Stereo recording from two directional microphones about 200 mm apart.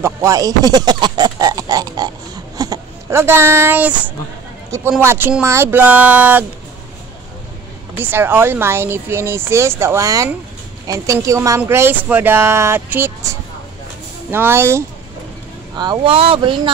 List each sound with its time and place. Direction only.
0.0 s speech: 15° right (ahead or behind)
2.5 s a sound: 20° right (ahead or behind)
4.9 s speech: 10° right (ahead or behind)
8.0 s speech: 10° right (ahead or behind); by 16.7 s 25° right (ahead or behind)